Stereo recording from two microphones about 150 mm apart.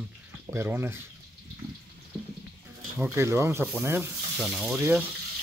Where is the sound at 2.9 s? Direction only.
15° right (ahead or behind).